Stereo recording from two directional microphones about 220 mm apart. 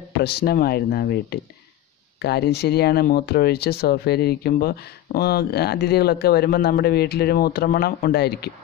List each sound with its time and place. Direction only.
0.2 s speech: 45° left (ahead or behind)